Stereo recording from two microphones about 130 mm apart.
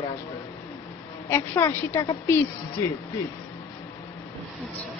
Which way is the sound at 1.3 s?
20° left (ahead or behind).